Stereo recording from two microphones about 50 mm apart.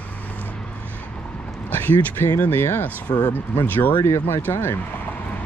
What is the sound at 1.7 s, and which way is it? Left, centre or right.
Speech, left.